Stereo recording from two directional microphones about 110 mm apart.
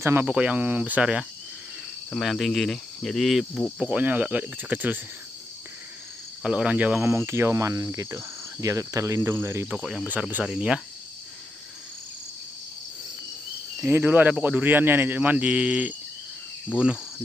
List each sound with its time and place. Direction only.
0.0 s speech: 20° right (ahead or behind)
2.1 s cricket: centre (ahead or behind)
3.8 s speech: 15° right (ahead or behind)
6.4 s speech: 10° right (ahead or behind)
7.0 s cricket: 25° right (ahead or behind)
9.7 s cricket: 5° right (ahead or behind)
10.4 s speech: 10° right (ahead or behind)
13.7 s speech: 20° right (ahead or behind)